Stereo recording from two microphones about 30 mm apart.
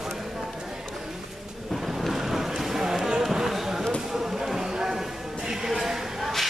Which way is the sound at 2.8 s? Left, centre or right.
Centre.